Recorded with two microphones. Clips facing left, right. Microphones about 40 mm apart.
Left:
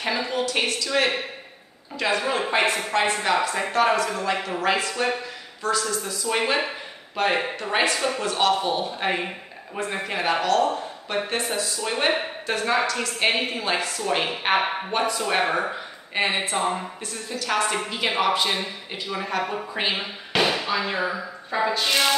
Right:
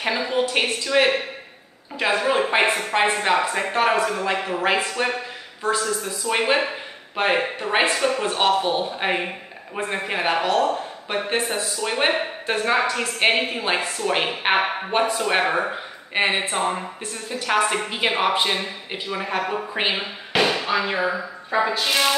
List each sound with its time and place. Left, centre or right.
0.0 s speech: centre
8.3 s speech: right; by 22.1 s centre